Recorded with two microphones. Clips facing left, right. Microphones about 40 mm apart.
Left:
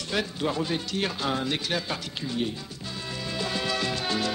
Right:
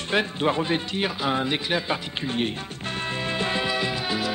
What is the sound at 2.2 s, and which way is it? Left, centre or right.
Music, right.